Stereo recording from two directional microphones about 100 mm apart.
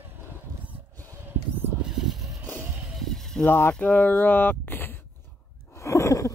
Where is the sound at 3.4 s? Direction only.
20° left (ahead or behind).